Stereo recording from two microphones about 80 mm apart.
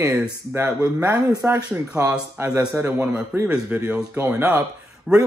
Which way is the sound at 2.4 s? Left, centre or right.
Right.